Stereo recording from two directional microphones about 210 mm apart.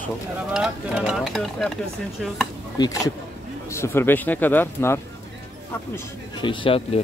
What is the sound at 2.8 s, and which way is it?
Speech, 15° left (ahead or behind).